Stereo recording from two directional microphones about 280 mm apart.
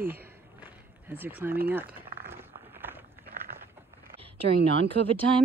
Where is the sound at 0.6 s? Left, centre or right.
Centre.